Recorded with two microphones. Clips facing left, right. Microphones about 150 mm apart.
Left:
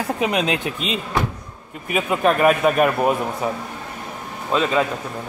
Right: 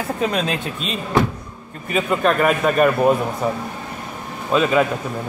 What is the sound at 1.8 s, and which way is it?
Speech, 10° left (ahead or behind).